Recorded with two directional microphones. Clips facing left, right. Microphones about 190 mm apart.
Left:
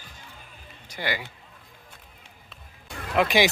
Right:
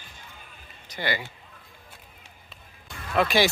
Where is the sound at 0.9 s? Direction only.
10° left (ahead or behind).